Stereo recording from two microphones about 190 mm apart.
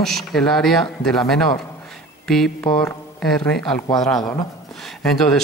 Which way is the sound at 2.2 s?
Centre (ahead or behind).